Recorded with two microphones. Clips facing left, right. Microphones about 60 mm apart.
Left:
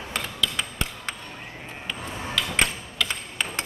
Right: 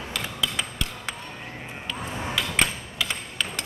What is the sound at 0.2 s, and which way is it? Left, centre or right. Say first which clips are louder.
Mechanisms: right 1 dB; centre.